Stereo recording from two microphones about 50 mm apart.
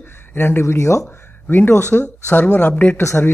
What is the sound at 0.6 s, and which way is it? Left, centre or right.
Speech, left.